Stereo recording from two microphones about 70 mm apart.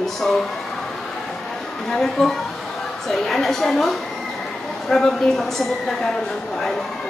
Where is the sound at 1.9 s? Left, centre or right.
Centre.